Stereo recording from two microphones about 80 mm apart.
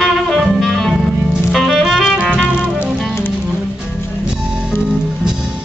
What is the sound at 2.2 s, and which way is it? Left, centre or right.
Music, centre.